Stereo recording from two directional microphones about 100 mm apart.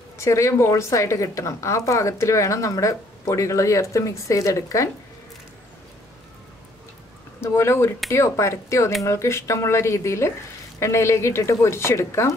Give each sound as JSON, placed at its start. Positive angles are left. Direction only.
{"t": 0.2, "sound": "a woman's voice", "side_deg": 30}
{"t": 7.3, "sound": "speech", "side_deg": 25}